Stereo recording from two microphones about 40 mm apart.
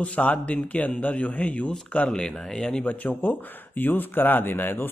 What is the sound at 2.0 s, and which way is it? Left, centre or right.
Speech, centre.